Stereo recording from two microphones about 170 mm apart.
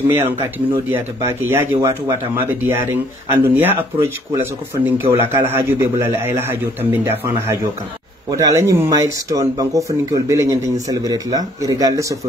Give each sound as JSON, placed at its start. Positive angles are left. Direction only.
{"t": 0.1, "sound": "a man's voice", "side_deg": -10}